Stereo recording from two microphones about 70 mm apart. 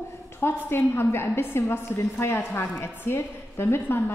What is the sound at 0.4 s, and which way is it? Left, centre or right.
A woman's voice, left.